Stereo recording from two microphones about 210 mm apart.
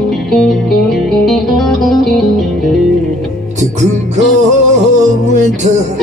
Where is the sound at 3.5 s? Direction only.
35° right (ahead or behind).